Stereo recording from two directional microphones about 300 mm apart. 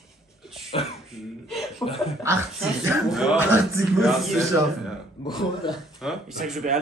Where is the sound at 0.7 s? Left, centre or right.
Centre.